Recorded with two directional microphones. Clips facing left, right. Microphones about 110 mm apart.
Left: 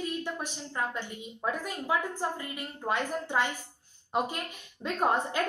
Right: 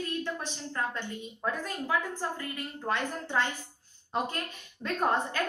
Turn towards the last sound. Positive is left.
turn(degrees=15)  # may be behind; listen again after turning